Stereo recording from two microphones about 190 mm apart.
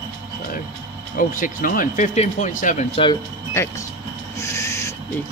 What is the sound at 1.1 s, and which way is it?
Speech, 45° left (ahead or behind).